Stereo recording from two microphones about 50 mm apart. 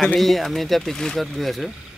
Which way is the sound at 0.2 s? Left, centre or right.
Centre.